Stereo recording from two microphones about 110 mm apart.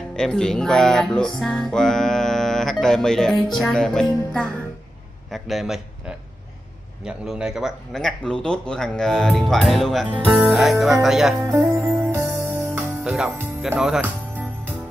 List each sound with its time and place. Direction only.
0.1 s music: 5° left (ahead or behind)
5.3 s a man's voice: centre (ahead or behind)
7.1 s music: 5° right (ahead or behind)
11.5 s music: 15° right (ahead or behind)
13.0 s music: 5° right (ahead or behind)